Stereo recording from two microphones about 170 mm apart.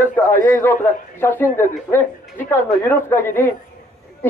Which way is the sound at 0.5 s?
15° left (ahead or behind).